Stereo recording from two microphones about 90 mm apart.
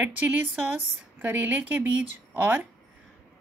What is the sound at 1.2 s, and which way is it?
A woman's voice, 20° right (ahead or behind).